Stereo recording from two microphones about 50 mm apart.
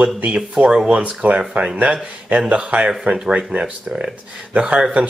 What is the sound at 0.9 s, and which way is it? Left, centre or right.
Speech, right.